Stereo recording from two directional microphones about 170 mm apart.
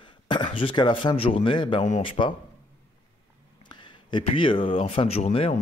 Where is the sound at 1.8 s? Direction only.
35° left (ahead or behind).